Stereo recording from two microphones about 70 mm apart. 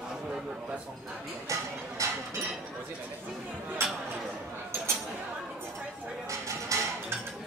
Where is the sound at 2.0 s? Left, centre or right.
Right.